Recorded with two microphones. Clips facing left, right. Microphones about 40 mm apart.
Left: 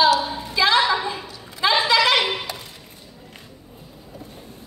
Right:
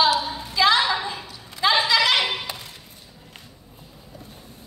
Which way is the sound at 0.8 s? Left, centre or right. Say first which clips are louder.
Left 3 dB; centre.